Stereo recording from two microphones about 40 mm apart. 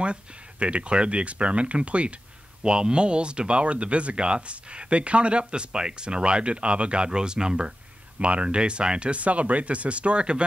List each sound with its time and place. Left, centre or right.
0.0 s speech: right